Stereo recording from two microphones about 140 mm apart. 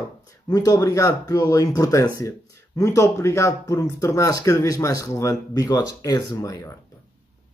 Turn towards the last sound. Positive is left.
turn(degrees=25)  # may be behind; listen again after turning